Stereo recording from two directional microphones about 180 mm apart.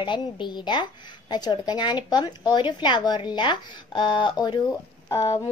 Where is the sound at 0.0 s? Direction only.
25° left (ahead or behind).